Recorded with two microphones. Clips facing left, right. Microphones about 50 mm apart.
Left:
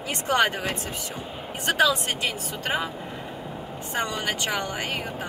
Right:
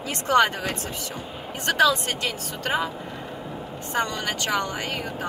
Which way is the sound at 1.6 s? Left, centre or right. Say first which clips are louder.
Right 2 dB; centre.